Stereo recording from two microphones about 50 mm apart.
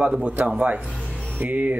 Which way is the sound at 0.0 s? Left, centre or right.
Right.